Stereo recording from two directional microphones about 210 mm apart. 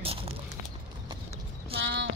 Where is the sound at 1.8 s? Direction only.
60° right (ahead or behind).